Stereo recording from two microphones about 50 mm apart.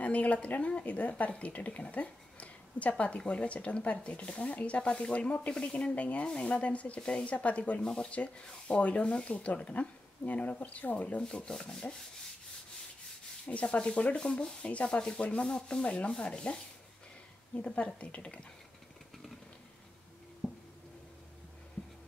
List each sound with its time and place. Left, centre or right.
0.0 s speech: left
5.5 s rub: centre
5.9 s speech: left
11.3 s rub: centre
13.5 s speech: left
17.6 s speech: left
20.4 s a sound: centre